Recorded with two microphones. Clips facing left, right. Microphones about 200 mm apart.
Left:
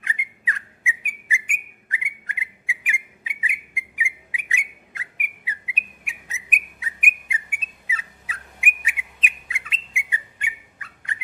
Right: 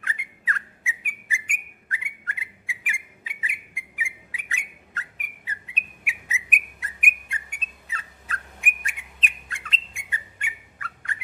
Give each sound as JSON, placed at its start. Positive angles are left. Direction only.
{"t": 0.0, "sound": "whistle", "side_deg": 15}
{"t": 6.0, "sound": "whistle", "side_deg": -5}